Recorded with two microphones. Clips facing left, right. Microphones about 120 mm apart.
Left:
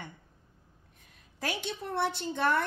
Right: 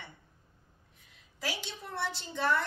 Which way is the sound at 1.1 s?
50° left (ahead or behind).